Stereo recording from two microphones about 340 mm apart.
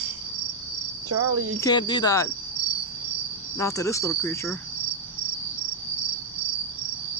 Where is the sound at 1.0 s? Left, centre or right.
Right.